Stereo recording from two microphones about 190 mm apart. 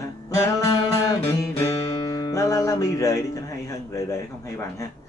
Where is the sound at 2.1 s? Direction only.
20° left (ahead or behind).